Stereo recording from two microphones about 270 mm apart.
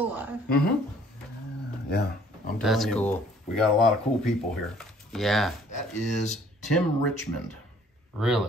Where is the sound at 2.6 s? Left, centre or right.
Centre.